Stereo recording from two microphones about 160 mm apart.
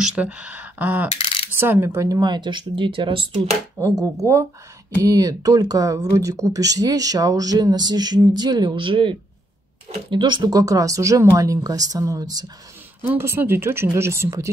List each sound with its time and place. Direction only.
0.0 s speech: 5° right (ahead or behind); by 3.3 s 35° right (ahead or behind)
3.7 s speech: 20° right (ahead or behind)
13.1 s speech: 15° right (ahead or behind)